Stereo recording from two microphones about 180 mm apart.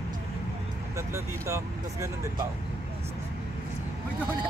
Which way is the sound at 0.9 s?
15° right (ahead or behind).